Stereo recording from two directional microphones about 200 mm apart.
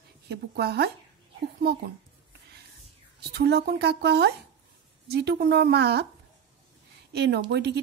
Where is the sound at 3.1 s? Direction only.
55° right (ahead or behind).